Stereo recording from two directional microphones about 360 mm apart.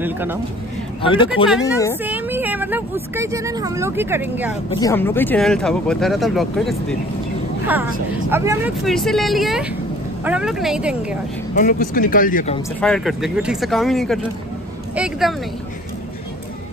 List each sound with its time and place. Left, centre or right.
0.0 s speech: centre
1.0 s speech: centre
2.0 s speech: centre
4.6 s speech: centre
11.5 s speech: left
12.8 s speech: centre